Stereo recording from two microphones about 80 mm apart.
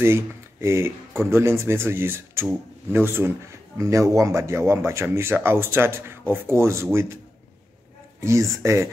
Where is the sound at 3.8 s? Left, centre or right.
Right.